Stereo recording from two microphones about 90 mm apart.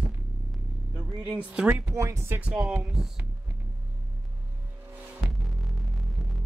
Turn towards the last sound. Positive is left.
turn(degrees=0)  # may be behind; listen again after turning